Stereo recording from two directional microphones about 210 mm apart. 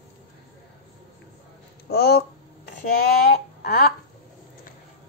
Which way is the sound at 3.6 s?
45° left (ahead or behind).